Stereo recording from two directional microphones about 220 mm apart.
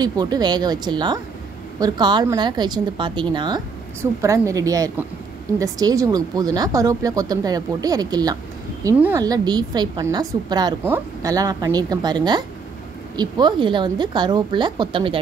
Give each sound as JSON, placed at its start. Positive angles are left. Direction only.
{"t": 0.0, "sound": "a woman's voice", "side_deg": -20}